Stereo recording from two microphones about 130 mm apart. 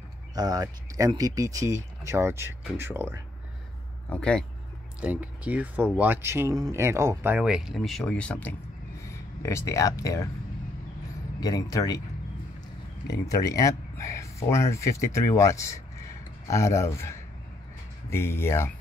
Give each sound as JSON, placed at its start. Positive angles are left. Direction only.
{"t": 0.3, "sound": "speech", "side_deg": -30}
{"t": 4.1, "sound": "speech", "side_deg": 5}
{"t": 5.0, "sound": "speech", "side_deg": -10}
{"t": 7.3, "sound": "speech", "side_deg": -5}
{"t": 9.0, "sound": "speech", "side_deg": 20}
{"t": 11.3, "sound": "speech", "side_deg": 30}
{"t": 13.3, "sound": "speech", "side_deg": 25}